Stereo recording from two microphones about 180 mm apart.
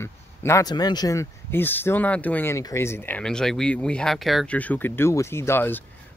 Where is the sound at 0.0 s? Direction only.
15° left (ahead or behind).